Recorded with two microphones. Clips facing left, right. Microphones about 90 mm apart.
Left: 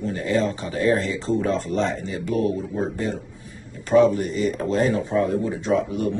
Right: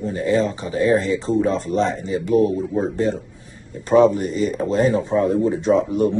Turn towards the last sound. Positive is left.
turn(degrees=-25)  # may be behind; listen again after turning